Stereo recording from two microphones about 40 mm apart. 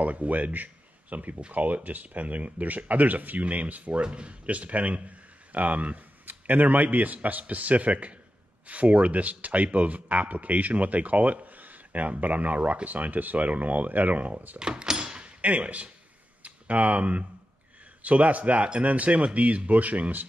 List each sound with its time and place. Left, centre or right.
0.0 s speech: right
14.6 s door: centre; by 15.9 s right
16.4 s speech: right